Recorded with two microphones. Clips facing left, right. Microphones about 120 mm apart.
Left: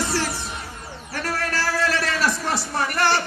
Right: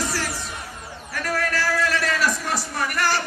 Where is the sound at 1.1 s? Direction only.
30° left (ahead or behind).